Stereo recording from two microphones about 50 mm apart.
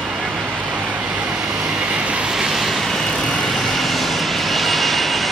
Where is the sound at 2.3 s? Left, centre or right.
Centre.